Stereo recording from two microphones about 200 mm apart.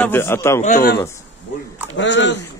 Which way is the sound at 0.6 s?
45° left (ahead or behind).